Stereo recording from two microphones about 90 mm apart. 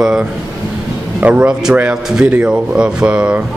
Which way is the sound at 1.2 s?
15° right (ahead or behind).